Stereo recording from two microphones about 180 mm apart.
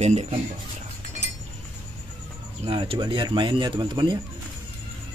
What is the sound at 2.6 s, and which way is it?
Speech, 30° right (ahead or behind).